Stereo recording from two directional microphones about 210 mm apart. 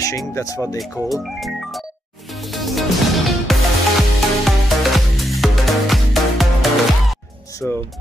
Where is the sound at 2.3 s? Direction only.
Centre (ahead or behind).